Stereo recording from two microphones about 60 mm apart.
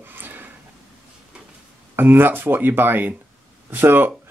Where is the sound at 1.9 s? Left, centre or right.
Right.